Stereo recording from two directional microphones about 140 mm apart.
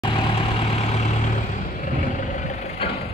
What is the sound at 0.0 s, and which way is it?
Vehicle, 35° left (ahead or behind).